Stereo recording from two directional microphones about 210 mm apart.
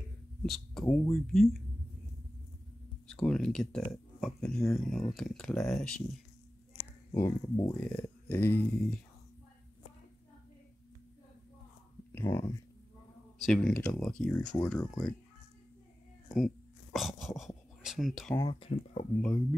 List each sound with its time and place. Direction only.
0.5 s speech: centre (ahead or behind)
3.1 s speech: 5° left (ahead or behind)
7.2 s speech: 15° left (ahead or behind)
12.1 s speech: 10° left (ahead or behind)
16.3 s a sound: centre (ahead or behind)
18.3 s speech: 20° left (ahead or behind)